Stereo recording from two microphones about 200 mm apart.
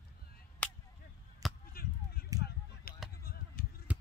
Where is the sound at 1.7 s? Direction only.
50° left (ahead or behind).